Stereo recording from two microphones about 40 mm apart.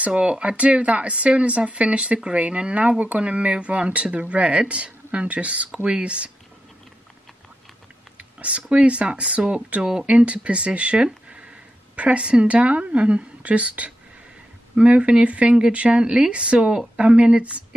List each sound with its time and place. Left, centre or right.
0.0 s speech: right
8.2 s speech: right
9.8 s speech: centre
10.0 s a woman's voice: right